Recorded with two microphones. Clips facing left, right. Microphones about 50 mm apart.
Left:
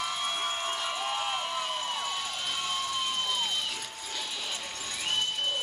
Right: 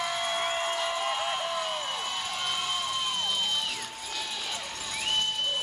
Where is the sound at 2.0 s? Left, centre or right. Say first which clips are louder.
Right 1 dB; centre.